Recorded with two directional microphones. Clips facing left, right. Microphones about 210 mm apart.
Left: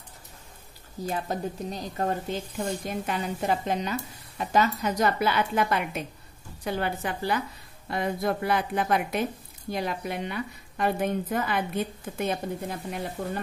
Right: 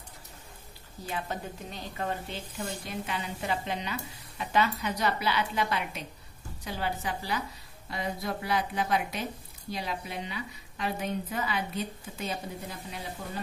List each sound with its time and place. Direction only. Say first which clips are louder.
1.0 s a woman's voice: left 6 dB; 40° left (ahead or behind); by 13.4 s 55° left (ahead or behind)